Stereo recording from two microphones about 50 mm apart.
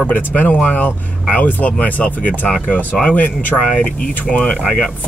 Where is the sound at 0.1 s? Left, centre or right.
Left.